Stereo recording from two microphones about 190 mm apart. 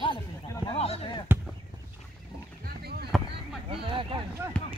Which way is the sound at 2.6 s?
55° right (ahead or behind).